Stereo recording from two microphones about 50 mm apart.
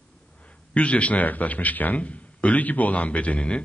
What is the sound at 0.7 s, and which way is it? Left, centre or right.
A man's voice, left.